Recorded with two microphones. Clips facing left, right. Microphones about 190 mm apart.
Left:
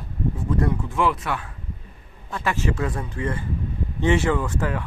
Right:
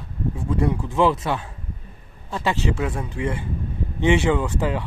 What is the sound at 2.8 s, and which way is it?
Speech, 5° right (ahead or behind).